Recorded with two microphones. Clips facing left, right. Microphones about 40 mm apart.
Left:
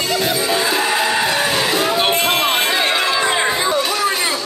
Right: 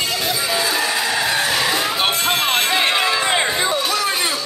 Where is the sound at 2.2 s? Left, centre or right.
Centre.